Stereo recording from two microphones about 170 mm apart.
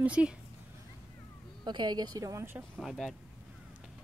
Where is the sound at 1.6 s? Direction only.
25° right (ahead or behind).